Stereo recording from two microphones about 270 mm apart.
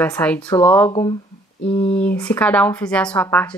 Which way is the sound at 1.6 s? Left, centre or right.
Left.